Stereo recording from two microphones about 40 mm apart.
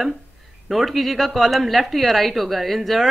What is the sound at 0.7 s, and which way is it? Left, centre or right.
Speech, centre.